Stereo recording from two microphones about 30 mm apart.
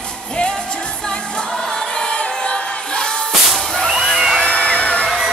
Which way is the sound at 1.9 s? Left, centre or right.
Left.